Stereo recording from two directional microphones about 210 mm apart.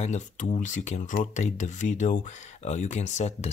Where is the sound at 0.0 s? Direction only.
35° left (ahead or behind).